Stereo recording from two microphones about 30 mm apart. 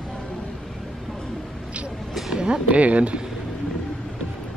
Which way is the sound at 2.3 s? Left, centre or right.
Right.